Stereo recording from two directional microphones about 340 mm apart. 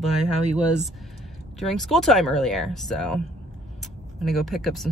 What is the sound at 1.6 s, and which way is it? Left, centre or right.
Speech, centre.